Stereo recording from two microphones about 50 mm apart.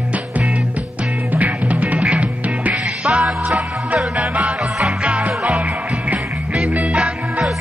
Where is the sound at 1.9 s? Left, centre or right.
Centre.